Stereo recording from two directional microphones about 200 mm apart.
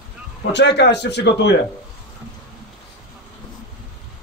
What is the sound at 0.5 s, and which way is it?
A man's voice, 60° left (ahead or behind).